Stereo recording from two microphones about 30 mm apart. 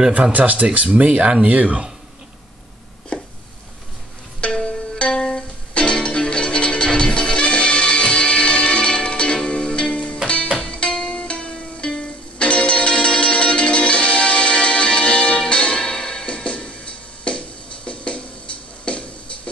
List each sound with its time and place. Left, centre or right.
0.3 s speech: right
4.4 s music: left
17.8 s a sound: left